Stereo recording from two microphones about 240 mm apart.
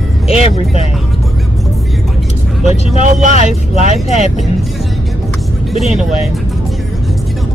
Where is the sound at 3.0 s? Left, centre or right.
Right.